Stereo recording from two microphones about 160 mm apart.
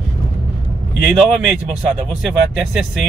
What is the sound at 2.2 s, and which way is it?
Speech, 5° right (ahead or behind).